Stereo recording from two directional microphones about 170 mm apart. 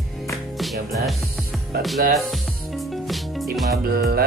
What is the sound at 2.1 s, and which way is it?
Music, centre (ahead or behind).